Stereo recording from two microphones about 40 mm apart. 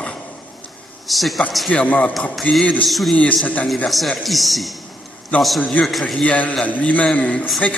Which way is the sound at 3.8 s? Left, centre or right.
Centre.